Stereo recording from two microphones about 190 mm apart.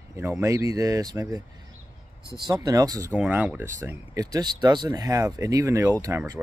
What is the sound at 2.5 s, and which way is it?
Speech, 20° right (ahead or behind).